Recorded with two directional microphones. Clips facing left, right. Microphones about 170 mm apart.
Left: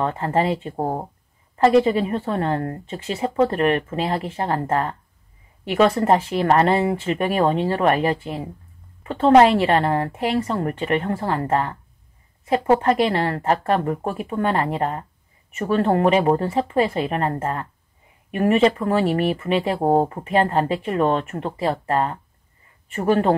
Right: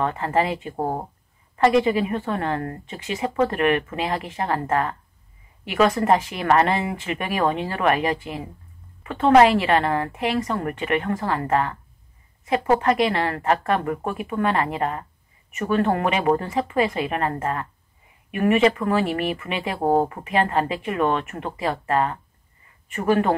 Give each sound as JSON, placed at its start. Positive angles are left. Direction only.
{"t": 0.0, "sound": "a woman's voice", "side_deg": 35}